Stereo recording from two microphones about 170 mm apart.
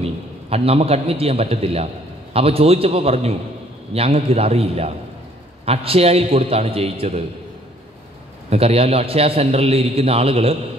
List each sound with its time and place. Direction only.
0.0 s a man's voice: 35° right (ahead or behind)
8.5 s a man's voice: 35° right (ahead or behind)